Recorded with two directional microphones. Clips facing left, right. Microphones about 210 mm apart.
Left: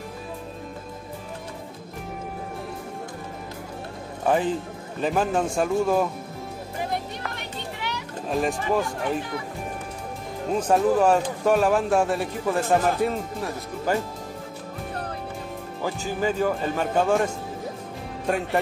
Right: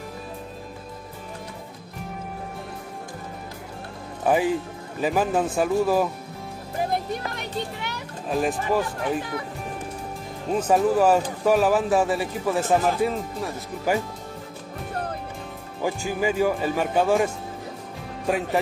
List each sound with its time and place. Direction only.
4.2 s speech: 10° right (ahead or behind)
7.2 s music: 40° right (ahead or behind)
8.3 s speech: centre (ahead or behind)
10.7 s speech: 5° right (ahead or behind)
15.8 s speech: 10° right (ahead or behind)